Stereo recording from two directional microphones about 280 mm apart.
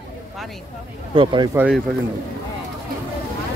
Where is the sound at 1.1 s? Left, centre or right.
Centre.